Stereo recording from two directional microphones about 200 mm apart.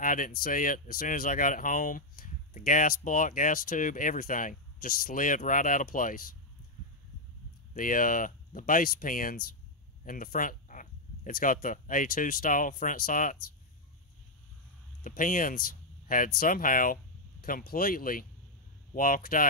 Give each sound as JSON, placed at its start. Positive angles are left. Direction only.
{"t": 0.0, "sound": "speech", "side_deg": 45}
{"t": 7.7, "sound": "speech", "side_deg": 45}
{"t": 15.0, "sound": "speech", "side_deg": 40}